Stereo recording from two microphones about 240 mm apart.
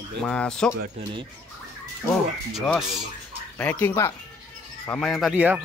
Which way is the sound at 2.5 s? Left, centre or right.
Centre.